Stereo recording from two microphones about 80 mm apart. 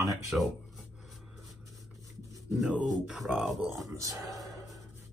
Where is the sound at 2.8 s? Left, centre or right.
Centre.